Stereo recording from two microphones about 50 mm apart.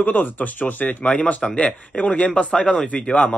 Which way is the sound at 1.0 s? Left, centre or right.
Left.